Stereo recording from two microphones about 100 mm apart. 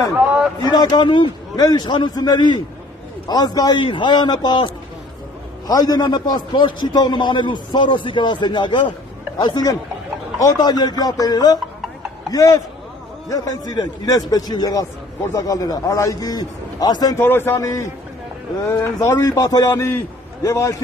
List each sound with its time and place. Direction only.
0.6 s a man's voice: 45° left (ahead or behind)
5.7 s a man's voice: 40° left (ahead or behind)
9.4 s a man's voice: 40° left (ahead or behind)
17.2 s speech: 20° left (ahead or behind)
17.6 s a man's voice: 35° left (ahead or behind)
18.7 s speech: 20° left (ahead or behind)
19.3 s a man's voice: 40° left (ahead or behind)